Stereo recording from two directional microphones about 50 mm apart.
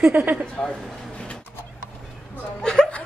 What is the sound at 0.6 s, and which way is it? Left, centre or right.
Speech, centre.